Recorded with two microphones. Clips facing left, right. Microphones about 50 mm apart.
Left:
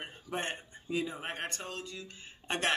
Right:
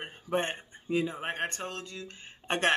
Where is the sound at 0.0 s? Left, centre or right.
Right.